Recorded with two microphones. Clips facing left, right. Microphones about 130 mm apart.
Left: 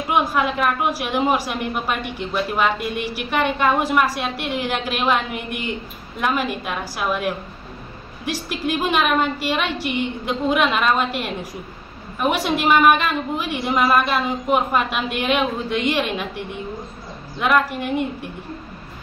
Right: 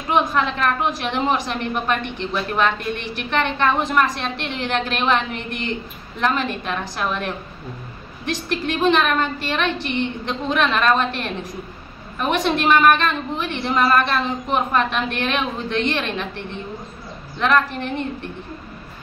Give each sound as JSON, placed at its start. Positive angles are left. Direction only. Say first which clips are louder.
{"t": 0.1, "sound": "a woman's voice", "louder": "right 1 dB", "side_deg": 10}